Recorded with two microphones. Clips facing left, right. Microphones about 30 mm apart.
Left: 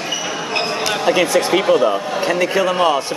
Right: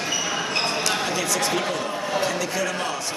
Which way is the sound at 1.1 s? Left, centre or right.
Left.